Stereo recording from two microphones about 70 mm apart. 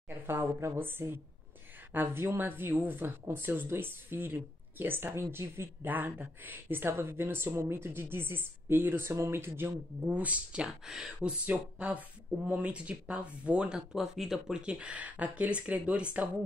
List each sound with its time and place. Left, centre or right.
0.1 s speech: right
10.0 s speech: centre
13.9 s speech: centre